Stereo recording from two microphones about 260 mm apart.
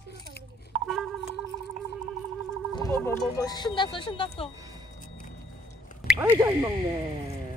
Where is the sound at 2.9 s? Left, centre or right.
Centre.